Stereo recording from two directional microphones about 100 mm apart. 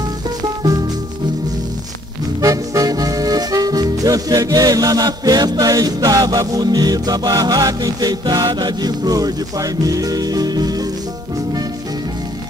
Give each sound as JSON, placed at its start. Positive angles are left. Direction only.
{"t": 2.4, "sound": "music", "side_deg": -35}